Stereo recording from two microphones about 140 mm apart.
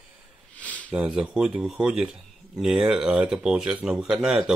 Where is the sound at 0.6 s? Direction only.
10° left (ahead or behind).